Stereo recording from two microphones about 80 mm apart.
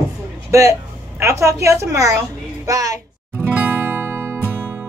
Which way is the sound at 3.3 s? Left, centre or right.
Right.